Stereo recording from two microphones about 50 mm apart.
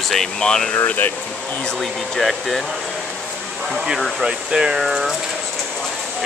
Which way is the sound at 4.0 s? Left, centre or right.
Centre.